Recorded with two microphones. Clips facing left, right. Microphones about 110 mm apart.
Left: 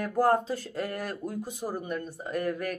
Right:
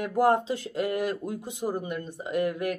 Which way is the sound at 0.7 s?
15° right (ahead or behind).